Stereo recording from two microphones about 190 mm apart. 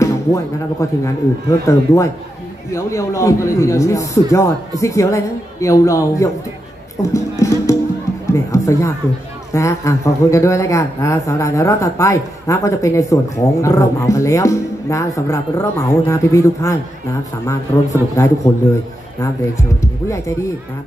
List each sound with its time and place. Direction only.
0.0 s a man's voice: 15° left (ahead or behind)
18.1 s a man's voice: 15° left (ahead or behind)
19.8 s a man's voice: 15° left (ahead or behind)